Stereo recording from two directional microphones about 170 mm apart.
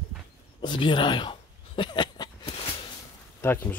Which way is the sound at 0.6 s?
25° left (ahead or behind).